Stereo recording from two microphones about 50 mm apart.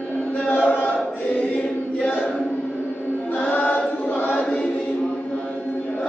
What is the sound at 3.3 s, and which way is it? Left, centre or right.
Choir, left.